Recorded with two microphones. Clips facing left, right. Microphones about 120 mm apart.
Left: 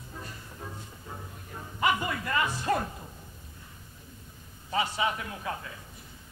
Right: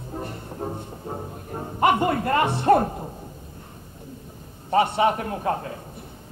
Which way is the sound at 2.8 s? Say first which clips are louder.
Right 10 dB; 45° right (ahead or behind).